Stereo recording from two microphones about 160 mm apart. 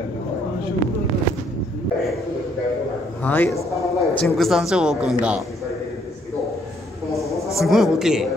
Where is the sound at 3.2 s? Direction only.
15° left (ahead or behind).